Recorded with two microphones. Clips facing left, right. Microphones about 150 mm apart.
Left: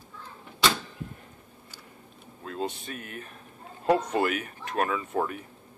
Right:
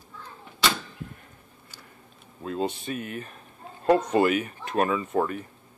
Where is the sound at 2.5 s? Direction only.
Centre (ahead or behind).